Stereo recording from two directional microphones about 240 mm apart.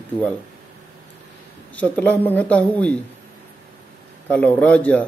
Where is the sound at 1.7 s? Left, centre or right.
Centre.